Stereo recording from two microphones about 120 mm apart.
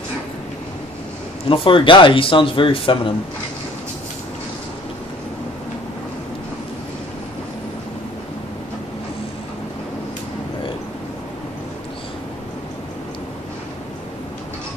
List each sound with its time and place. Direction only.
1.5 s speech: 45° left (ahead or behind)